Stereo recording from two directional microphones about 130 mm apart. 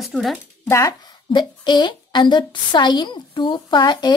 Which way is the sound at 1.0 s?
35° left (ahead or behind).